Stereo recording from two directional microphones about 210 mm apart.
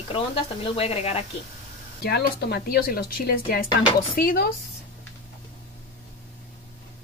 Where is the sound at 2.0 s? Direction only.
50° left (ahead or behind).